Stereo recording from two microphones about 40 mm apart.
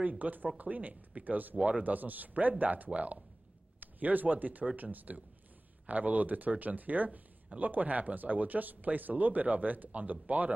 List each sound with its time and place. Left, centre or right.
0.2 s speech: right